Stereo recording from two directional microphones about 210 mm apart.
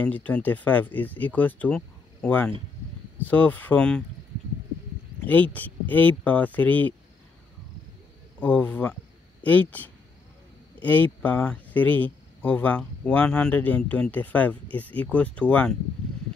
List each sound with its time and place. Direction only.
0.0 s speech: 5° left (ahead or behind)
5.2 s speech: 5° left (ahead or behind)
8.4 s speech: 5° left (ahead or behind)